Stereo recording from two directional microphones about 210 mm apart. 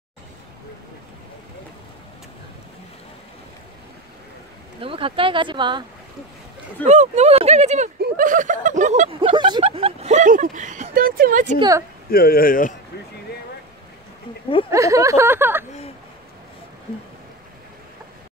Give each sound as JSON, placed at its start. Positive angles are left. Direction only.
{"t": 4.7, "sound": "speech", "side_deg": -25}
{"t": 6.9, "sound": "speech", "side_deg": -30}
{"t": 9.3, "sound": "speech", "side_deg": -25}
{"t": 12.1, "sound": "speech", "side_deg": 45}
{"t": 14.7, "sound": "speech", "side_deg": -15}